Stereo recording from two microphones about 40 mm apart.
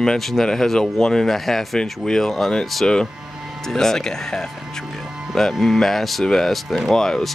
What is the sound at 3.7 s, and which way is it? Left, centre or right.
Speech, centre.